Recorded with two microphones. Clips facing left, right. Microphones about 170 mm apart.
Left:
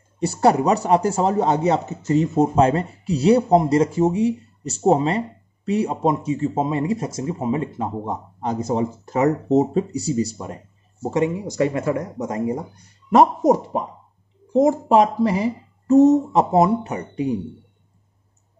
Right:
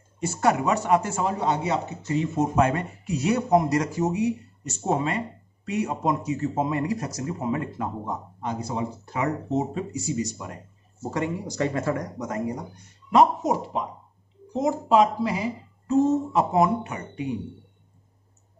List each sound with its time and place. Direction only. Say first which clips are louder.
0.2 s speech: left 6 dB; 35° left (ahead or behind)
8.5 s speech: left 7 dB; 45° left (ahead or behind); by 12.6 s 25° left (ahead or behind)
13.4 s speech: left 8 dB; 50° left (ahead or behind)